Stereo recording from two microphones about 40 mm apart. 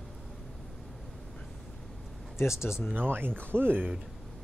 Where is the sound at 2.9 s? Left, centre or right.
Right.